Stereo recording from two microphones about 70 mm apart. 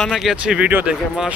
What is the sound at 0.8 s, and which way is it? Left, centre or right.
Speech, centre.